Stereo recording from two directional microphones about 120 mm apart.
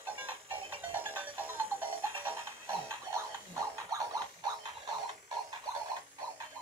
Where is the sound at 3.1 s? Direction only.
30° right (ahead or behind).